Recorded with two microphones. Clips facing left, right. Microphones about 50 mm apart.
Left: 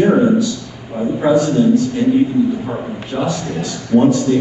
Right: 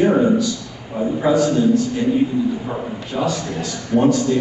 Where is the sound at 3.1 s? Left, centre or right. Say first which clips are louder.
Left 2 dB; left.